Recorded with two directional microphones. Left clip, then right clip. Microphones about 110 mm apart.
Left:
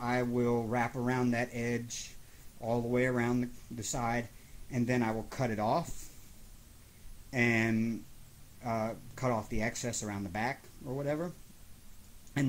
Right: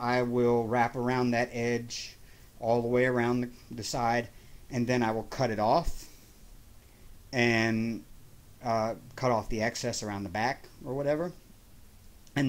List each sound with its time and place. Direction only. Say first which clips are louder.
0.0 s speech: right 5 dB; 30° right (ahead or behind)
7.2 s speech: right 3 dB; 30° right (ahead or behind)